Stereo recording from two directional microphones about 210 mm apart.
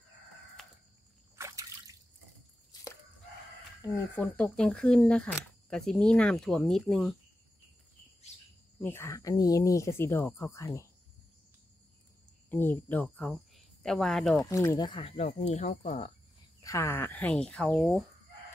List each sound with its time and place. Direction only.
1.3 s trickle: 15° right (ahead or behind)
2.7 s chicken: 20° left (ahead or behind)
3.8 s speech: 15° left (ahead or behind)
4.2 s speech: 5° left (ahead or behind)
8.8 s speech: 15° left (ahead or behind)
12.4 s speech: 10° left (ahead or behind)
14.4 s speech: 15° left (ahead or behind); by 16.1 s 35° left (ahead or behind)
16.6 s speech: 15° left (ahead or behind)